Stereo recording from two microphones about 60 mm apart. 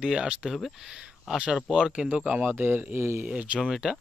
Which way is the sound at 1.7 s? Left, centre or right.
Centre.